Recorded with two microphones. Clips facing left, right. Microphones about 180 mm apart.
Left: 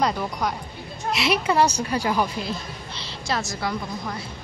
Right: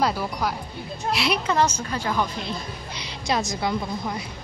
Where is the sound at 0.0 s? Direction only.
5° right (ahead or behind).